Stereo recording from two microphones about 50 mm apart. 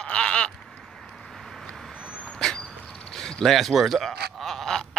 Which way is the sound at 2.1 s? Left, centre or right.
Left.